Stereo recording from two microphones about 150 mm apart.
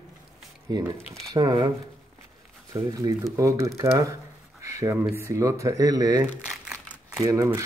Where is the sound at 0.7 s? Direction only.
30° right (ahead or behind).